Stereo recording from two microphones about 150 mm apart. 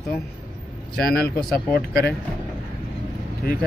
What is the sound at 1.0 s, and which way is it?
Speech, 90° left.